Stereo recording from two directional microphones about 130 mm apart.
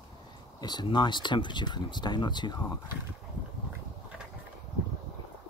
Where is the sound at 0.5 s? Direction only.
30° left (ahead or behind).